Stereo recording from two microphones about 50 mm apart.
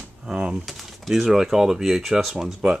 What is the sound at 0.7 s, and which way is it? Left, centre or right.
Speech, centre.